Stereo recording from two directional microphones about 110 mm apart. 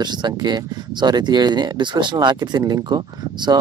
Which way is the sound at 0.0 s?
40° right (ahead or behind).